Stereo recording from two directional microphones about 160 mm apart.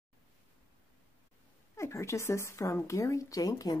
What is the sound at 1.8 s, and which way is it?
Speech, 15° left (ahead or behind).